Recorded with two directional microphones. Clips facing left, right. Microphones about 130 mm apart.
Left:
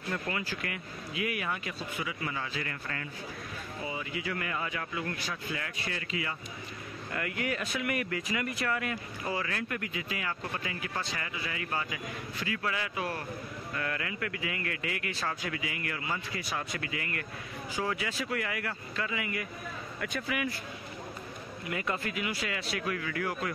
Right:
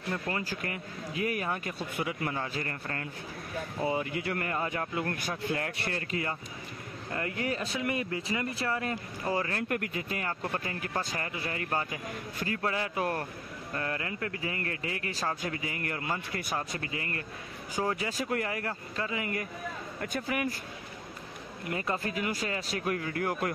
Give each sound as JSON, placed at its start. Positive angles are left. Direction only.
{"t": 0.3, "sound": "speech", "side_deg": -40}
{"t": 1.8, "sound": "speech", "side_deg": -55}
{"t": 7.1, "sound": "speech", "side_deg": -30}
{"t": 13.7, "sound": "speech", "side_deg": -30}
{"t": 16.5, "sound": "speech", "side_deg": -35}
{"t": 21.6, "sound": "speech", "side_deg": -35}